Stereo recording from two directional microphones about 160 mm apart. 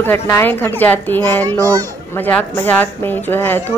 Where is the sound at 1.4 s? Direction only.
20° right (ahead or behind).